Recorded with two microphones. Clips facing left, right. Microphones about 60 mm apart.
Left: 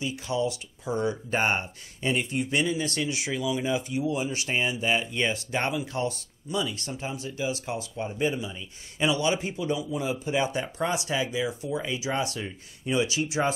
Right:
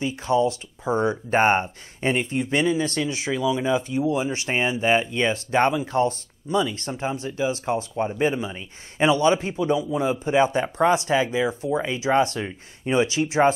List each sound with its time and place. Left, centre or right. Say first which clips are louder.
0.0 s speech: right 7 dB; right